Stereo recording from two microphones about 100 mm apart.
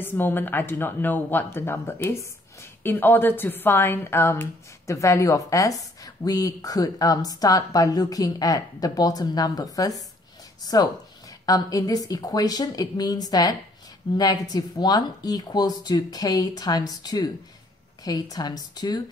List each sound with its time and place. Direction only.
0.0 s speech: 20° left (ahead or behind); by 18.9 s 45° left (ahead or behind)